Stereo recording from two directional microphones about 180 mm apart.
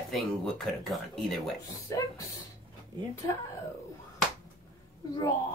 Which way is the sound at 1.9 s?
15° left (ahead or behind).